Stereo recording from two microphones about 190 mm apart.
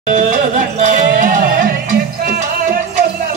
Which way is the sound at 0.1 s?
40° right (ahead or behind).